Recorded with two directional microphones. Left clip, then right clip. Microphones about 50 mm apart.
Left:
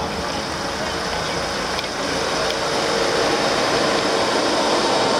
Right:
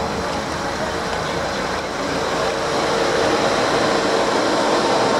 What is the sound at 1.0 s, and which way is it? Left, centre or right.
Vehicle, left.